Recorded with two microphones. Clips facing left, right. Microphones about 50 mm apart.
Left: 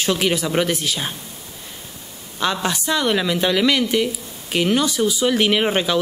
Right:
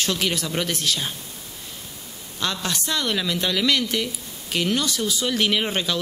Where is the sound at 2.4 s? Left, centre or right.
Centre.